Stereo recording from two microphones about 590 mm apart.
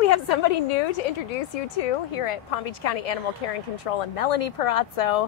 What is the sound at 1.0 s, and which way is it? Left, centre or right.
Speech, left.